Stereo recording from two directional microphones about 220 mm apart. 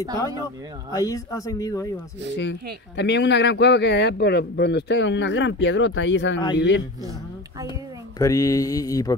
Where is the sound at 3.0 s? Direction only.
50° left (ahead or behind).